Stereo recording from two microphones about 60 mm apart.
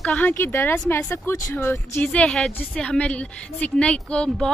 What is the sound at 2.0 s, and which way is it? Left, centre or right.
A woman's voice, left.